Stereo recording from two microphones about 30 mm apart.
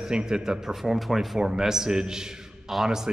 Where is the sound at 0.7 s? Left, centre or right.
Centre.